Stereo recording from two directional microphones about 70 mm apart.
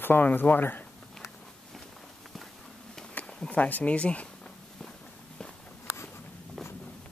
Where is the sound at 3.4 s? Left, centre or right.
Centre.